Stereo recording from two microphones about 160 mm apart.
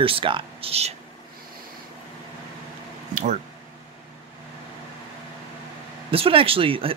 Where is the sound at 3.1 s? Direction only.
55° right (ahead or behind).